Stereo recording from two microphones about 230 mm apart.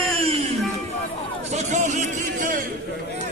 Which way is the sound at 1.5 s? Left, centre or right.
Right.